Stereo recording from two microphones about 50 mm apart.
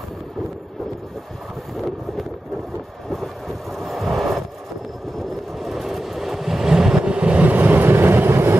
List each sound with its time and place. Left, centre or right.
3.1 s vehicle: centre
5.6 s vehicle: centre; by 7.4 s right
7.4 s vehicle: right